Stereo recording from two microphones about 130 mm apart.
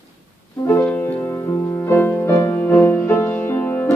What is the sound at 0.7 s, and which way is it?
Music, 15° left (ahead or behind).